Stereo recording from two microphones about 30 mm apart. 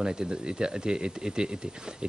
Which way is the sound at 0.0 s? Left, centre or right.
Right.